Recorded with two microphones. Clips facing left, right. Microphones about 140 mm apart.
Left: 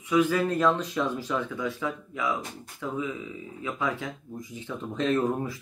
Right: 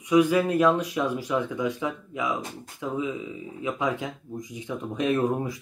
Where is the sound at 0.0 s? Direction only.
15° right (ahead or behind).